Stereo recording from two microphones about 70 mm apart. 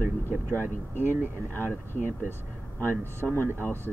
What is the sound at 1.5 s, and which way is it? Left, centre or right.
Speech, left.